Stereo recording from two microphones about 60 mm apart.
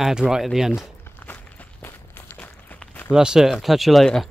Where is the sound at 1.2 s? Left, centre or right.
Left.